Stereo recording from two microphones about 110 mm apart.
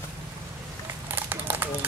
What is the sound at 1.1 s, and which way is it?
Run, 20° right (ahead or behind).